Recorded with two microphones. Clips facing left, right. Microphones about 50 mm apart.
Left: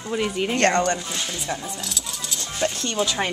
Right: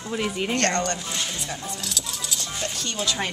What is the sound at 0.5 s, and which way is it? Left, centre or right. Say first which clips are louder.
Speech: left 6 dB; centre.